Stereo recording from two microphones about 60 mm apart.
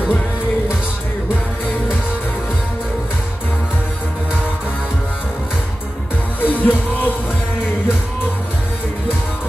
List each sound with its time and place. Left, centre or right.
6.4 s music: left